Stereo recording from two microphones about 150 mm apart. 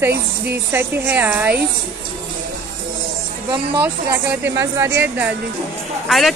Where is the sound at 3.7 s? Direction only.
15° right (ahead or behind).